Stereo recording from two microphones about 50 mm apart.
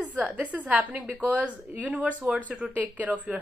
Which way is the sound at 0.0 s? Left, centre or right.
Right.